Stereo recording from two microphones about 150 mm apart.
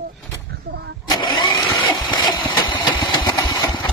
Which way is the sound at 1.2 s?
30° left (ahead or behind).